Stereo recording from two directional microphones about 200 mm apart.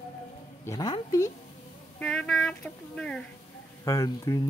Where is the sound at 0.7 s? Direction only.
20° left (ahead or behind).